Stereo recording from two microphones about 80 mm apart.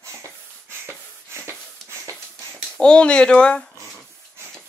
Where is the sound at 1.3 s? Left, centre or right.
Right.